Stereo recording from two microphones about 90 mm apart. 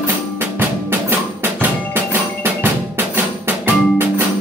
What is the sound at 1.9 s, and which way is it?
Percussion, 20° right (ahead or behind).